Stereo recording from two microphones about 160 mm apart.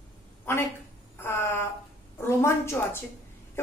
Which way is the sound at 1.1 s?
15° left (ahead or behind).